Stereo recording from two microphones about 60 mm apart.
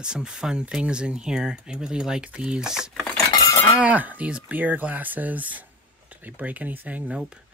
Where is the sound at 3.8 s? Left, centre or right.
Right.